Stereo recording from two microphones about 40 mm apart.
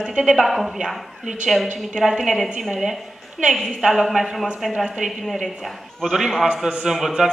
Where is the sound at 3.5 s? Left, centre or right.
Centre.